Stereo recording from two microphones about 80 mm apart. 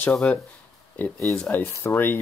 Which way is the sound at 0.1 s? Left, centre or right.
Centre.